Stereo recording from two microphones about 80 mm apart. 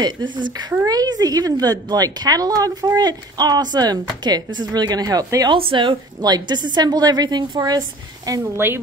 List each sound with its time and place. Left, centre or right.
0.0 s a woman's voice: right
5.5 s a woman's voice: right
6.3 s a woman's voice: right
8.3 s speech: right